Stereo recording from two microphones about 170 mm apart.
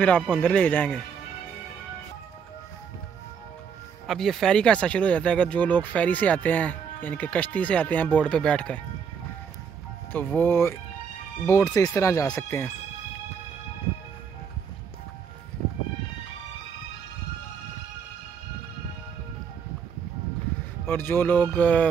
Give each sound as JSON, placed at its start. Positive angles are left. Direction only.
{"t": 0.0, "sound": "speech", "side_deg": 5}
{"t": 4.1, "sound": "speech", "side_deg": 0}
{"t": 10.1, "sound": "speech", "side_deg": 10}
{"t": 20.8, "sound": "speech", "side_deg": 15}